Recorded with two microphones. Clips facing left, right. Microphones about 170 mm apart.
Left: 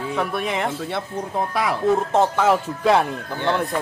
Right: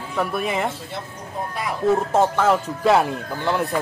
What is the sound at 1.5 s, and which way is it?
Speech, 80° left.